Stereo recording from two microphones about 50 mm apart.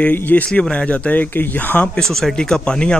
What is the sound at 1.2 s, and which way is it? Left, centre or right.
Speech, left.